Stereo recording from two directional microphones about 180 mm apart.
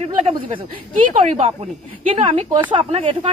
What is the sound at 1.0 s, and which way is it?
Speech, 45° right (ahead or behind).